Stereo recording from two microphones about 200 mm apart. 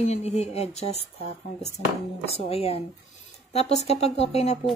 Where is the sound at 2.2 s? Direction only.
30° left (ahead or behind).